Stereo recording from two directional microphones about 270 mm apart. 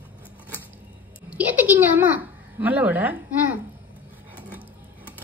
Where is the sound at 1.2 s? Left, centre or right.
Centre.